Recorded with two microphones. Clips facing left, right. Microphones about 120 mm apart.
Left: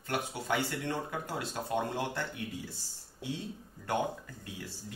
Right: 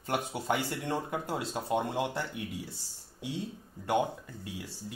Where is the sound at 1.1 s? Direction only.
20° right (ahead or behind).